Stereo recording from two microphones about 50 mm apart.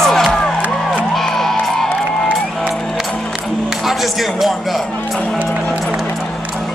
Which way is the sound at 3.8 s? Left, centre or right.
Centre.